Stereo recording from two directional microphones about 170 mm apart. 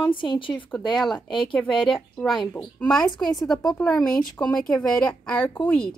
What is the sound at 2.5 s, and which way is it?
A woman's voice, 10° left (ahead or behind).